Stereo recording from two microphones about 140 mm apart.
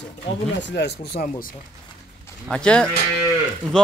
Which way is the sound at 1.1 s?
80° left.